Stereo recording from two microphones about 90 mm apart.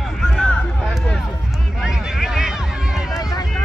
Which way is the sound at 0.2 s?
5° left (ahead or behind).